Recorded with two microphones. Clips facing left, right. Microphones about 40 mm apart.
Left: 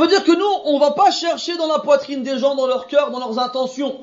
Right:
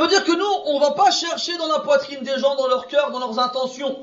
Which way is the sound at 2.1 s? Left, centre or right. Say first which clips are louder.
Left 2 dB; right.